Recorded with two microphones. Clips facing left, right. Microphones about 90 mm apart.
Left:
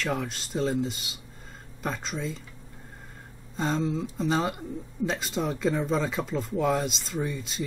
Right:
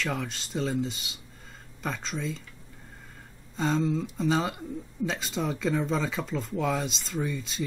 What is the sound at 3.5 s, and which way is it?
Speech, centre (ahead or behind).